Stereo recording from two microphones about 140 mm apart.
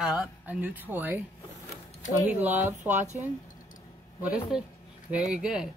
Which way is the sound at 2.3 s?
10° right (ahead or behind).